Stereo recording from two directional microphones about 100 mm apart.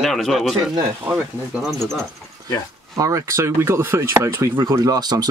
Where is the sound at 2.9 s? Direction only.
35° right (ahead or behind).